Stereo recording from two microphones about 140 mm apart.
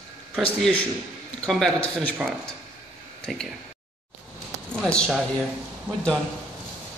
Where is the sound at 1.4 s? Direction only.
5° left (ahead or behind).